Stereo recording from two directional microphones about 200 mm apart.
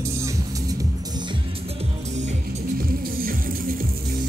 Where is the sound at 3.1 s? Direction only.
45° right (ahead or behind).